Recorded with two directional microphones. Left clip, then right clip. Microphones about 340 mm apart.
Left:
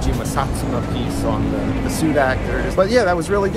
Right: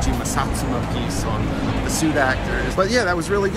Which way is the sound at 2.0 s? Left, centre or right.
Centre.